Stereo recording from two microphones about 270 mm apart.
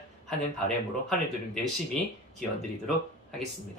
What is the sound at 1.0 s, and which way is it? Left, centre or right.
Speech, centre.